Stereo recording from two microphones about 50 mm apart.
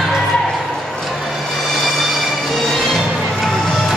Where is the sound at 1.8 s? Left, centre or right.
Centre.